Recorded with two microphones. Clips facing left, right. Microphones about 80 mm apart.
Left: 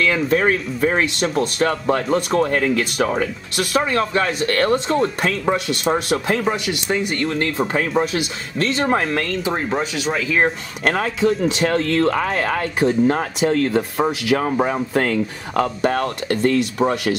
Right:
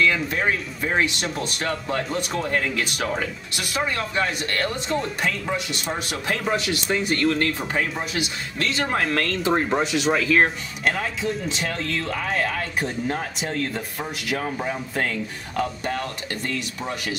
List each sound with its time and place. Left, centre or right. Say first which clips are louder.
0.0 s speech: left 4 dB; left
3.5 s speech: left 8 dB; left
6.4 s speech: left 3 dB; centre
7.2 s speech: left 1 dB; left
7.7 s speech: left 7 dB; left
8.5 s speech: left 5 dB; left
9.4 s speech: even; centre
10.8 s speech: left 6 dB; left
12.4 s speech: left 8 dB; left